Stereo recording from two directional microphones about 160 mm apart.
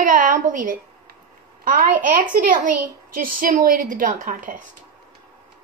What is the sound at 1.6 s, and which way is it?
A woman's voice, 55° right (ahead or behind).